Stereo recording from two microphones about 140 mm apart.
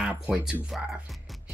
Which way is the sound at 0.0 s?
5° right (ahead or behind).